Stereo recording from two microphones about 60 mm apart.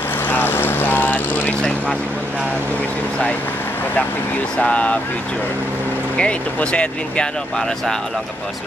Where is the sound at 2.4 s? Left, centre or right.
Left.